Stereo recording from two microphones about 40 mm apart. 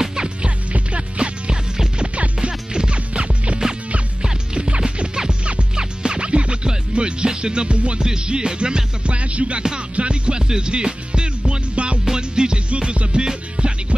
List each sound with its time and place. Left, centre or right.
0.0 s music: centre
12.6 s music: right